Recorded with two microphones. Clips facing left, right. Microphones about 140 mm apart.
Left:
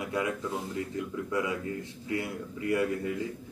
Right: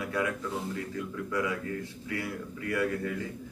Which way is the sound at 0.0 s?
20° left (ahead or behind).